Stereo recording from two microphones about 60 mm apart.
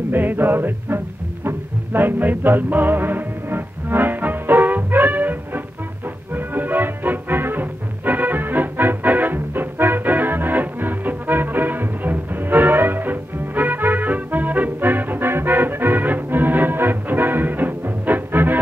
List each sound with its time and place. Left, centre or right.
0.1 s music: right